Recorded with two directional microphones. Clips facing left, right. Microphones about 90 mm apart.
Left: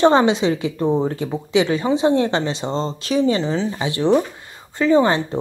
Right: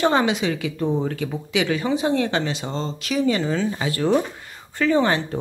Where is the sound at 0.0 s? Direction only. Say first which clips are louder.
Left 5 dB; 30° left (ahead or behind).